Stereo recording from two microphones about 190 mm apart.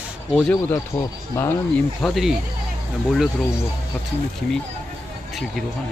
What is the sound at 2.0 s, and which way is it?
Speech, centre (ahead or behind).